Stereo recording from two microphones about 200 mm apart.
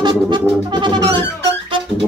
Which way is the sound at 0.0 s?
20° right (ahead or behind).